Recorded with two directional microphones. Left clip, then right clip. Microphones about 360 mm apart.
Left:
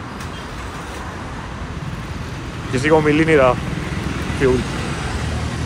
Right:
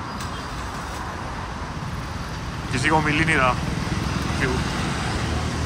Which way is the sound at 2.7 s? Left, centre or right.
Centre.